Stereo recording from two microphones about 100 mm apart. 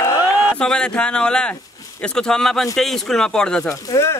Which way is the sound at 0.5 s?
5° left (ahead or behind).